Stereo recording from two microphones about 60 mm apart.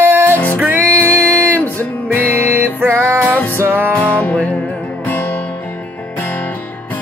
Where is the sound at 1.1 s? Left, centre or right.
Right.